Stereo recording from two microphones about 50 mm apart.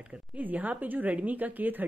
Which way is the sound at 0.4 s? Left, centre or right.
Right.